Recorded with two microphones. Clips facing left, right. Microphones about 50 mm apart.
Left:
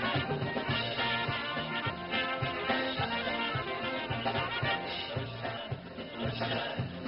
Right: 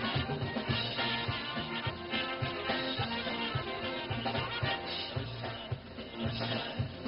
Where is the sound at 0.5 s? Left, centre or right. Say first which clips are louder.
Left 2 dB; left.